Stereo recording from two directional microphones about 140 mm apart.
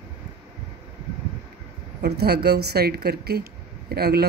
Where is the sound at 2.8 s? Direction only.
90° right.